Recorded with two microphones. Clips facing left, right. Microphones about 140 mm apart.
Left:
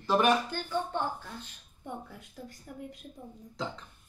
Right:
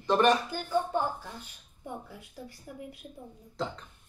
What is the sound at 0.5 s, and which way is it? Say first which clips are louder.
Speech: right 3 dB; 10° right (ahead or behind).